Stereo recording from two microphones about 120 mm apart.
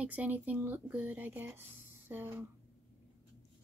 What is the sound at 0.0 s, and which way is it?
Speech, 15° right (ahead or behind).